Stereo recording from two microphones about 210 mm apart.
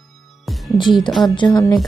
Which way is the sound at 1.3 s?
20° left (ahead or behind).